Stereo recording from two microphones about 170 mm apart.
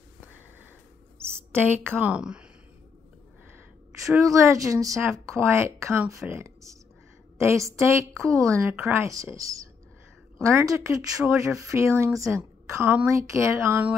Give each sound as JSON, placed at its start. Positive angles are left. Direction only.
{"t": 1.1, "sound": "a sound", "side_deg": -15}
{"t": 1.9, "sound": "speech", "side_deg": -10}
{"t": 4.0, "sound": "speech", "side_deg": -20}